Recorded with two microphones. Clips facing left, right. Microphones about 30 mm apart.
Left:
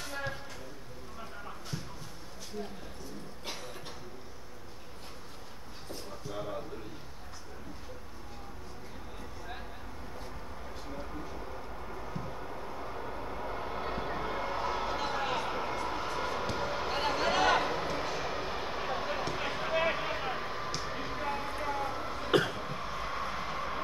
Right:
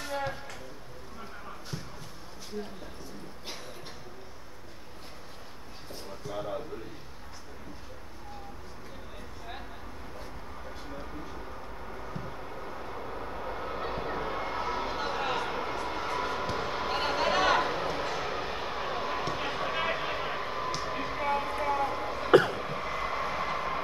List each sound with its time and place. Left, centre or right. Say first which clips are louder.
6.2 s a man's voice: right 3 dB; centre
12.1 s vehicle: right 1 dB; centre
21.6 s throat clearing: right 5 dB; right
23.2 s vehicle: right 4 dB; right